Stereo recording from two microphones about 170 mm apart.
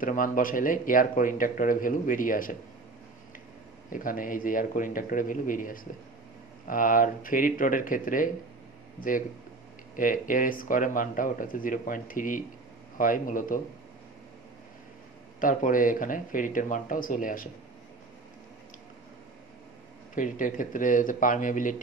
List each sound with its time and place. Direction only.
0.0 s speech: 55° left (ahead or behind)
3.9 s speech: 55° left (ahead or behind)
9.9 s speech: 55° left (ahead or behind)
15.4 s speech: 55° left (ahead or behind)
20.2 s speech: 50° left (ahead or behind)